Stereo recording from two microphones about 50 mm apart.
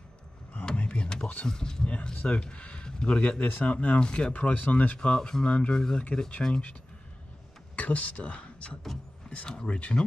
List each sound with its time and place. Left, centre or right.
0.5 s a sound: left
1.4 s speech: centre
3.4 s speech: left
7.7 s speech: left